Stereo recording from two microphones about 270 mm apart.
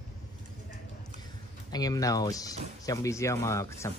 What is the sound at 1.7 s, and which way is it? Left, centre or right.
Speech, centre.